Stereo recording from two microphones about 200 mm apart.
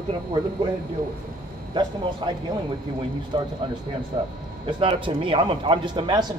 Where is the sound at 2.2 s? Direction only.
25° right (ahead or behind).